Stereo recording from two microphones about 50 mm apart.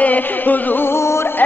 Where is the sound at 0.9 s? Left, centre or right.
Left.